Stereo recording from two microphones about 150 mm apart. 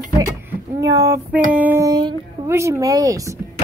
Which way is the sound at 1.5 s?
10° right (ahead or behind).